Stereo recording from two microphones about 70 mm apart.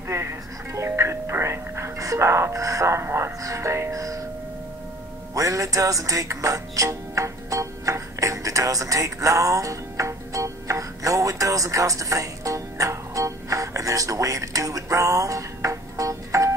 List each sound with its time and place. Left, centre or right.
0.1 s music: right
5.3 s music: right